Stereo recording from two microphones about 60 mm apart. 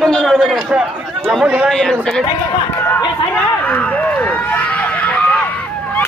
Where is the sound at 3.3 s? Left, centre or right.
Left.